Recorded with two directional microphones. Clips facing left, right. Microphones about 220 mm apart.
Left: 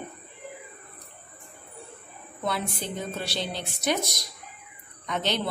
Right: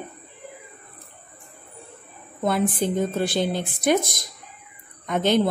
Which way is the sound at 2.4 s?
50° right (ahead or behind).